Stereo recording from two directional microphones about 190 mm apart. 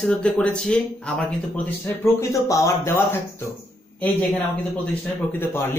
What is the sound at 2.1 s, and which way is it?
Speech, 15° left (ahead or behind).